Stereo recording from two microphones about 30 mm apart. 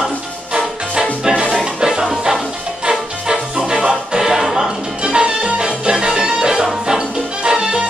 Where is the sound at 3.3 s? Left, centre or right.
Right.